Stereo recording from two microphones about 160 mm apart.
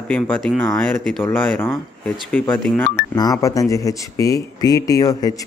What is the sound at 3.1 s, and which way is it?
Speech, 20° left (ahead or behind).